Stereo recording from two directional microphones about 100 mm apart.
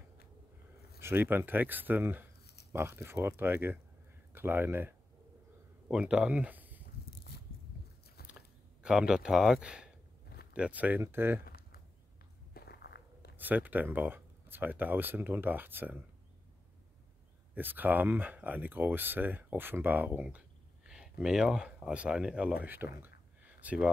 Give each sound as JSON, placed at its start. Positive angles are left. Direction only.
{"t": 1.0, "sound": "speech", "side_deg": -20}
{"t": 5.9, "sound": "speech", "side_deg": -10}
{"t": 8.3, "sound": "a sound", "side_deg": -10}
{"t": 10.5, "sound": "speech", "side_deg": -15}
{"t": 13.4, "sound": "speech", "side_deg": -15}
{"t": 17.6, "sound": "speech", "side_deg": -20}